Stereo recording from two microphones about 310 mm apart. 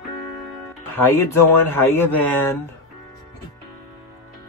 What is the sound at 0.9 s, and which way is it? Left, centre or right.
Speech, centre.